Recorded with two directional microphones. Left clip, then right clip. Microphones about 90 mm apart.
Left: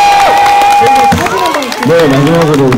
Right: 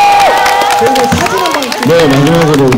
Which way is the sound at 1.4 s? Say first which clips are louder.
Even; 40° right (ahead or behind).